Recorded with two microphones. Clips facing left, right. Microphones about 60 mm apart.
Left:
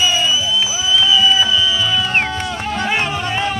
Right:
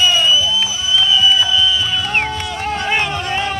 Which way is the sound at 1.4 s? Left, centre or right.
Left.